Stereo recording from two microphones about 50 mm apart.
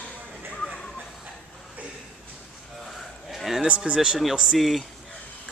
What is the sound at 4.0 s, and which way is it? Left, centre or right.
Speech, centre.